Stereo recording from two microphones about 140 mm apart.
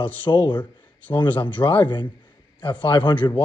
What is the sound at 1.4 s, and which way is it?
Speech, 35° left (ahead or behind).